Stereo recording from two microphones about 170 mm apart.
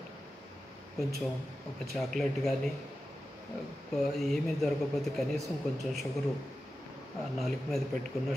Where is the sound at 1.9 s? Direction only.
Centre (ahead or behind).